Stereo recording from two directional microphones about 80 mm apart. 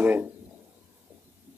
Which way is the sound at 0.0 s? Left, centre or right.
Right.